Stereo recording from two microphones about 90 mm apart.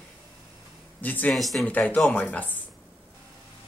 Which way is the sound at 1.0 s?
20° left (ahead or behind).